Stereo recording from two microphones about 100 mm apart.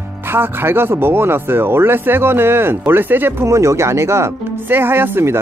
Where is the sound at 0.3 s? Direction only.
20° right (ahead or behind).